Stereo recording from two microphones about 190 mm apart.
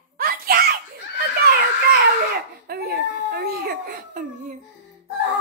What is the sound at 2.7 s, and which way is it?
Baby cry, 55° right (ahead or behind).